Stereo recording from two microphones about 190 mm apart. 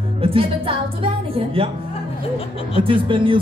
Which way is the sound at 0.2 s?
30° right (ahead or behind).